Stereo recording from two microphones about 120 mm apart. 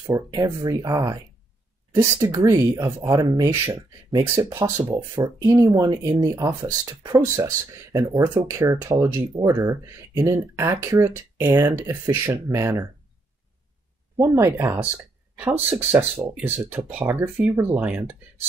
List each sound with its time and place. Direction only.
0.1 s speech: 25° right (ahead or behind)
14.1 s speech: 20° right (ahead or behind)